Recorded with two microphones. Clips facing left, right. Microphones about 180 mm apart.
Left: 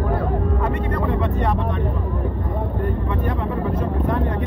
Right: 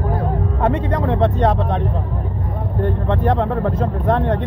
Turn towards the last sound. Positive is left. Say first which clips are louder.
# right 3 dB
turn(degrees=-85)